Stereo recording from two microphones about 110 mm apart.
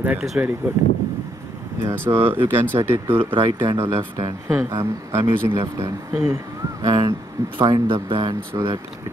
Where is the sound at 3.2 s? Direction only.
55° right (ahead or behind).